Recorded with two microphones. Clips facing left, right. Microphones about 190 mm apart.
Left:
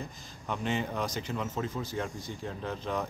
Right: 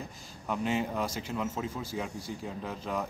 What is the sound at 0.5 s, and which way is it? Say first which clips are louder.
Speech: right 2 dB; 5° right (ahead or behind).